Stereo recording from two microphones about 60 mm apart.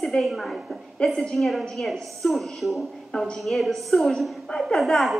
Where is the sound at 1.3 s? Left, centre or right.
Centre.